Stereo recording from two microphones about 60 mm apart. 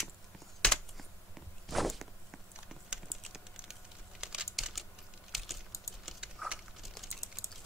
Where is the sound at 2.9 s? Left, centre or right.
Centre.